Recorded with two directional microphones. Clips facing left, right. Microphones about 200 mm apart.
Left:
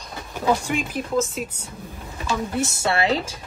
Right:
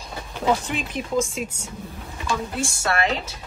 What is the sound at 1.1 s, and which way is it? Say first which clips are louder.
Speech: even; 5° left (ahead or behind).